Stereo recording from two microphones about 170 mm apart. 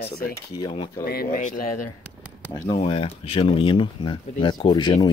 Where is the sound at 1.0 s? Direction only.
60° left (ahead or behind).